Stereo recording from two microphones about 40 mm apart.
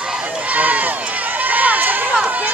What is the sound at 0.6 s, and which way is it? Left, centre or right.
Run, right.